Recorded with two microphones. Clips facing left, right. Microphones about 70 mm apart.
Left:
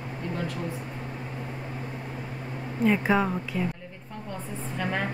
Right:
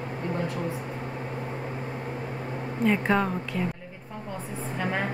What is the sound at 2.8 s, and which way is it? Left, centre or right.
Speech, centre.